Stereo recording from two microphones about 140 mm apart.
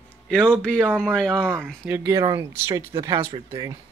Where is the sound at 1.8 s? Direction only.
20° right (ahead or behind).